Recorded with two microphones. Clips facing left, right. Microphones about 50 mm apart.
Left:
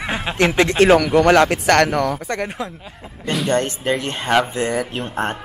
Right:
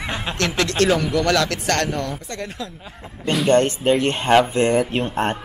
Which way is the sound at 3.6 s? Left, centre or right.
Right.